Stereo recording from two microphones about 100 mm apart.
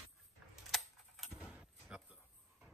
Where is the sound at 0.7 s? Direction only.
Centre (ahead or behind).